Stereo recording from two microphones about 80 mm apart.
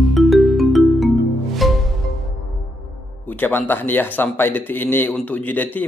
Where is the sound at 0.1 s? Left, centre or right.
Centre.